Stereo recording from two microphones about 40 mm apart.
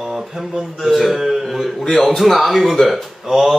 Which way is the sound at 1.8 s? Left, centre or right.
Centre.